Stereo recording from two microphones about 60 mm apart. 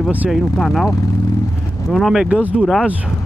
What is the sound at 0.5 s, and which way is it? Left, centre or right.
Speech, centre.